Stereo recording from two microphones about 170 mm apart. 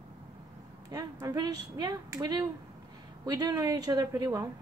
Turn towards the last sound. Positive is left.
turn(degrees=-20)  # may be behind; listen again after turning